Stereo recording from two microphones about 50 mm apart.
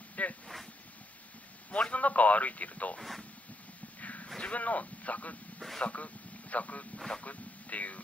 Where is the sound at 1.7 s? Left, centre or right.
Left.